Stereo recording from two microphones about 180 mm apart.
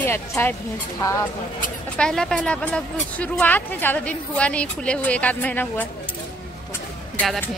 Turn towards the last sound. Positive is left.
turn(degrees=5)  # may be behind; listen again after turning